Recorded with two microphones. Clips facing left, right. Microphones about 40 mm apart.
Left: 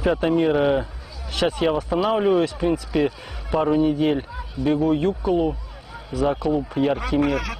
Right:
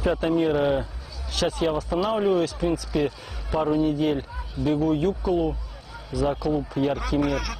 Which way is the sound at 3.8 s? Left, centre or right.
Left.